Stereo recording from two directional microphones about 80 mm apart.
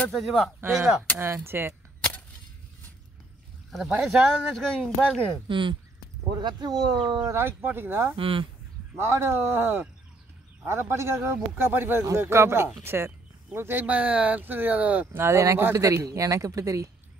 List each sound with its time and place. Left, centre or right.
0.1 s speech: centre
1.2 s speech: right
3.7 s speech: centre
4.5 s speech: centre
5.5 s speech: right
6.3 s speech: right
7.2 s speech: right
15.2 s a man's voice: right